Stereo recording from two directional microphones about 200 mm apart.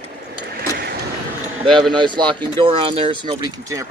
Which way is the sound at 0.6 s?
55° right (ahead or behind).